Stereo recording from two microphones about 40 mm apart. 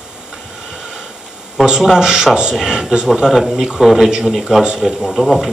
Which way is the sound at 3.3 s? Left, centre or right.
Centre.